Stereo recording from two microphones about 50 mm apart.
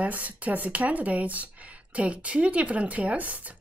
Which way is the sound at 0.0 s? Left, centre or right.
Right.